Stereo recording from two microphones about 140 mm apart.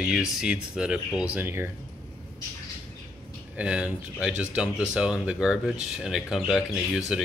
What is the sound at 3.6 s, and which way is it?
Speech, 10° right (ahead or behind).